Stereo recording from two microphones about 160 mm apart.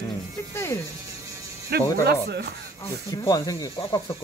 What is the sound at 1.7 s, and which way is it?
Speech, 75° right (ahead or behind).